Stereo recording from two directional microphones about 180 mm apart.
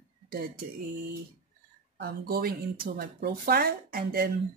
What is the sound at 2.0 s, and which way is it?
Speech, 60° right (ahead or behind).